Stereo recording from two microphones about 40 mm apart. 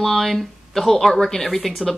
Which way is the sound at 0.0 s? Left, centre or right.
Centre.